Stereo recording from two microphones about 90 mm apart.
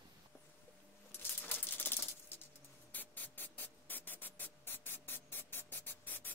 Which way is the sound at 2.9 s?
20° left (ahead or behind).